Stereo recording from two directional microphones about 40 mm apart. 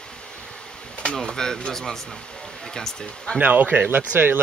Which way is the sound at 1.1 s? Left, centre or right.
Centre.